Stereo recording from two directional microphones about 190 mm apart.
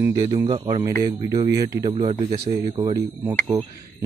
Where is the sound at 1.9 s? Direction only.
30° right (ahead or behind).